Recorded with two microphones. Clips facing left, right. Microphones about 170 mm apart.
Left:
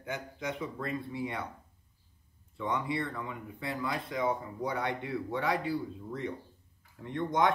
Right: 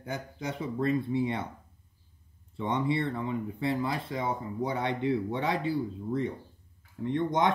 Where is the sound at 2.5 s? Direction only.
25° right (ahead or behind).